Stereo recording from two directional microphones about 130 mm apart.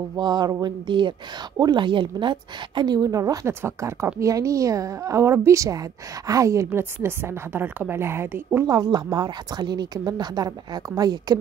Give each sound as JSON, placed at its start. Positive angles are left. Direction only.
{"t": 0.2, "sound": "a woman's voice", "side_deg": -35}
{"t": 8.6, "sound": "a woman's voice", "side_deg": -30}